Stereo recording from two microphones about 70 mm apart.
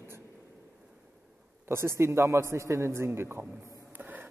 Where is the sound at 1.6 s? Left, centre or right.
Right.